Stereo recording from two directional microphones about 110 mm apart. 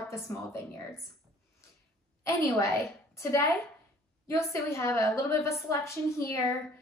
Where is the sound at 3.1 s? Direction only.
25° left (ahead or behind).